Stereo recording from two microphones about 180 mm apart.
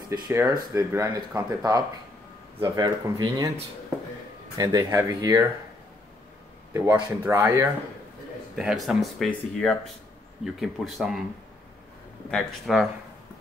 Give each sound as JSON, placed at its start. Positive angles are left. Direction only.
{"t": 0.1, "sound": "speech", "side_deg": -15}
{"t": 4.6, "sound": "speech", "side_deg": -20}
{"t": 6.7, "sound": "speech", "side_deg": -15}
{"t": 8.5, "sound": "speech", "side_deg": 0}
{"t": 12.3, "sound": "speech", "side_deg": 0}